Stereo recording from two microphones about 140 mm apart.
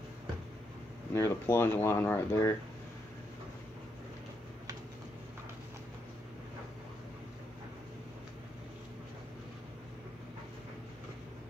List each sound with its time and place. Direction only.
1.1 s speech: 20° left (ahead or behind)